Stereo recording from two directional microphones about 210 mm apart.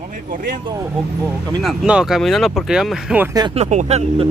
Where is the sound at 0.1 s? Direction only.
40° right (ahead or behind).